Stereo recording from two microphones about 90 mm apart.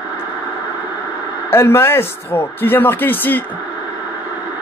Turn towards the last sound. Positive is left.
turn(degrees=20)  # may be behind; listen again after turning